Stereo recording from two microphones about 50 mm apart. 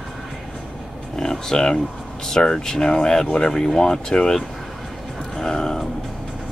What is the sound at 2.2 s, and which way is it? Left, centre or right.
Speech, centre.